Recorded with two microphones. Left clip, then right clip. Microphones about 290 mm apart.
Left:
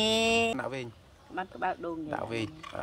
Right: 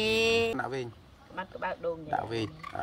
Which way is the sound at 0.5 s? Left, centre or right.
Centre.